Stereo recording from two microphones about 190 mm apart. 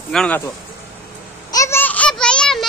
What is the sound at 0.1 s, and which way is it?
Speech, 5° left (ahead or behind).